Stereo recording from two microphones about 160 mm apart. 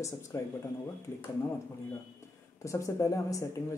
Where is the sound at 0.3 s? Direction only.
15° left (ahead or behind).